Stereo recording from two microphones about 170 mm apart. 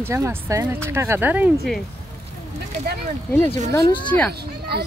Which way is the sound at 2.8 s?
60° right (ahead or behind).